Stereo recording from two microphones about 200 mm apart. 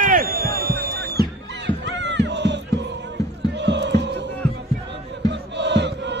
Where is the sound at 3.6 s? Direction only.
60° right (ahead or behind).